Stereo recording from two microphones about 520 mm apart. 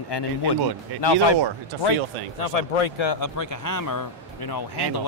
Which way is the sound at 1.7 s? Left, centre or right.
Right.